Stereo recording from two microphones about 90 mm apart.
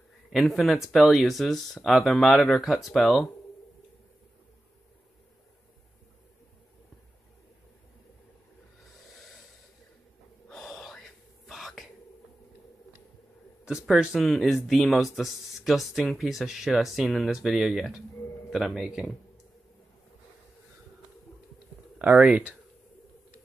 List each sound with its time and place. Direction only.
0.3 s speech: centre (ahead or behind)
10.5 s gasp: 5° left (ahead or behind)
13.7 s speech: 5° right (ahead or behind)
21.9 s speech: 15° right (ahead or behind)